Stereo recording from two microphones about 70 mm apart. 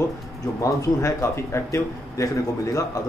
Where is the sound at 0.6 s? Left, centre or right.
Left.